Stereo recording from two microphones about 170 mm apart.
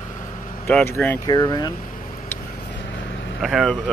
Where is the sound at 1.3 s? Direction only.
25° left (ahead or behind).